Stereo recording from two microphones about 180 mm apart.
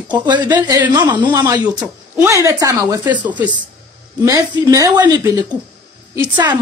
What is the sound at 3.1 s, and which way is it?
Speech, 10° right (ahead or behind).